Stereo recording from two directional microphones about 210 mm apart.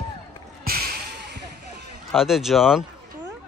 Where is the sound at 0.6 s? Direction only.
45° right (ahead or behind).